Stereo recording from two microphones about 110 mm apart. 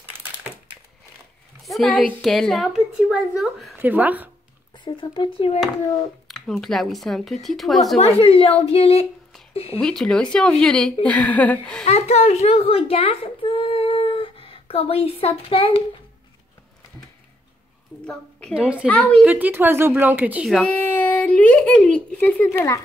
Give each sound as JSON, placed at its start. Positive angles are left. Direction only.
{"t": 1.7, "sound": "a woman's voice", "side_deg": 0}
{"t": 3.8, "sound": "speech", "side_deg": -15}
{"t": 4.7, "sound": "speech", "side_deg": 45}
{"t": 6.2, "sound": "a woman's voice", "side_deg": 5}
{"t": 8.2, "sound": "speech", "side_deg": 60}
{"t": 9.8, "sound": "speech", "side_deg": 5}
{"t": 11.9, "sound": "a child's voice", "side_deg": 85}
{"t": 18.5, "sound": "speech", "side_deg": -10}
{"t": 18.9, "sound": "speech", "side_deg": 10}
{"t": 19.2, "sound": "speech", "side_deg": -15}
{"t": 20.6, "sound": "speech", "side_deg": 15}
{"t": 22.5, "sound": "speech", "side_deg": 25}